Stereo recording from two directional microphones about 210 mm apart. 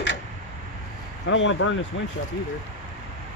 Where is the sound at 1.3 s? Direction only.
65° left (ahead or behind).